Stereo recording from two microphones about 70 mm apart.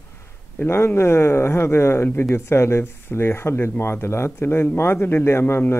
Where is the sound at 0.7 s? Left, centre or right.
Left.